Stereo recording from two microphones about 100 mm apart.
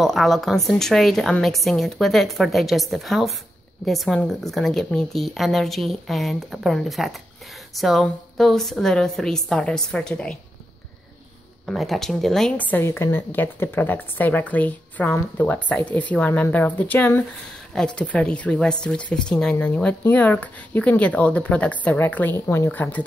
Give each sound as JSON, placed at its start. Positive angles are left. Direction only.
{"t": 0.0, "sound": "speech", "side_deg": 0}
{"t": 11.6, "sound": "speech", "side_deg": 0}
{"t": 12.5, "sound": "a woman's voice", "side_deg": 15}